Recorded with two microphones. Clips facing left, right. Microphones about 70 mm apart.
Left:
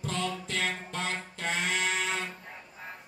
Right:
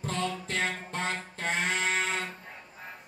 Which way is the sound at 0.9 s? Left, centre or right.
Right.